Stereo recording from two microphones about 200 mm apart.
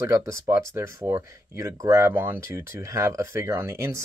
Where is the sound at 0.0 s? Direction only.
15° right (ahead or behind).